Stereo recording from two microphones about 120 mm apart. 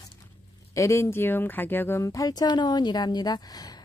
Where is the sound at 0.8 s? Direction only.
25° left (ahead or behind).